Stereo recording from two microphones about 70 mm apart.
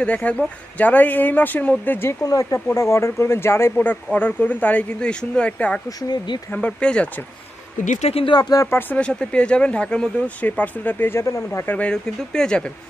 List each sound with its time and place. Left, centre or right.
0.0 s speech: centre
2.2 s speech: left
3.8 s speech: left
5.9 s speech: left
6.5 s speech: centre
8.3 s speech: left
8.6 s speech: left
9.0 s speech: centre
11.1 s speech: left
11.8 s speech: centre